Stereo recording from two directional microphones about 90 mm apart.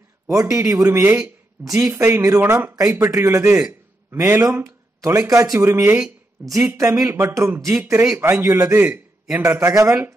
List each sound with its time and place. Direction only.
0.3 s speech: 35° right (ahead or behind)
1.1 s a sound: 10° right (ahead or behind)
1.7 s speech: 35° right (ahead or behind)
3.4 s a man's voice: 15° right (ahead or behind)
4.4 s speech: 30° right (ahead or behind)
5.6 s speech: 30° right (ahead or behind)
8.7 s a man's voice: 15° right (ahead or behind)
9.4 s speech: 35° right (ahead or behind)